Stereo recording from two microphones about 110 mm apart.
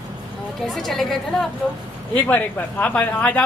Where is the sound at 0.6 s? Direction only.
Centre (ahead or behind).